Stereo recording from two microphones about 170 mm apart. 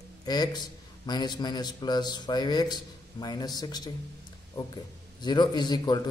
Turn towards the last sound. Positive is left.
turn(degrees=25)  # may be behind; listen again after turning